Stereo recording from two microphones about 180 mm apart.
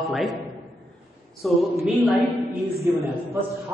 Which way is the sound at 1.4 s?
Centre (ahead or behind).